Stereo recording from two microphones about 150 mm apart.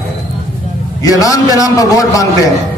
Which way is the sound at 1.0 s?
25° left (ahead or behind).